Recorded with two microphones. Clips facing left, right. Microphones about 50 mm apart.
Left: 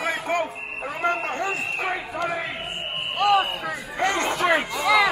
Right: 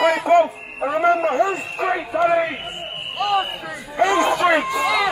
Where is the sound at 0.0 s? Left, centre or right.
Right.